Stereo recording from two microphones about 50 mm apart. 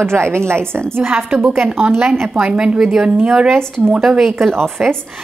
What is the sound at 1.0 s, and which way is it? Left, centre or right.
A woman's voice, right.